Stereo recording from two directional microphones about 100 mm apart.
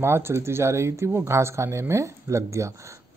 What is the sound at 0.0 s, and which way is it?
Speech, 25° right (ahead or behind).